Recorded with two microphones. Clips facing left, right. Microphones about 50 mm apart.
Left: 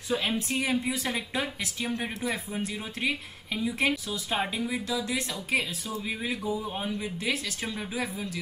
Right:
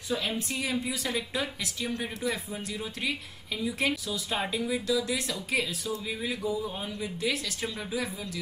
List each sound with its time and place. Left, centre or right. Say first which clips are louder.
0.1 s speech: left 3 dB; left